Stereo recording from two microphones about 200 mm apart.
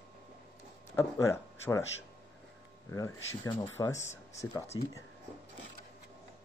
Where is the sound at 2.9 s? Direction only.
15° left (ahead or behind).